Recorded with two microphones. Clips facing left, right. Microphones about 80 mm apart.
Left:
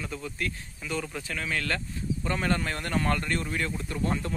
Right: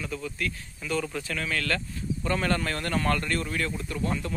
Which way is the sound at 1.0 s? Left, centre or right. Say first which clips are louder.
Right 2 dB; centre.